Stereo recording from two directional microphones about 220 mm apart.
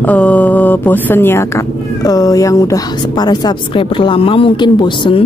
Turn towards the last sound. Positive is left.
turn(degrees=20)  # may be behind; listen again after turning